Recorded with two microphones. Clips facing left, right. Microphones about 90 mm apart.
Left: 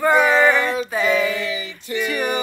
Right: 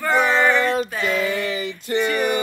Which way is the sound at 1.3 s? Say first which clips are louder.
Right 2 dB; 55° right (ahead or behind).